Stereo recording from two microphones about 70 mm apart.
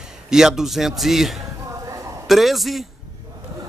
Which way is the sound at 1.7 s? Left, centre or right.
Right.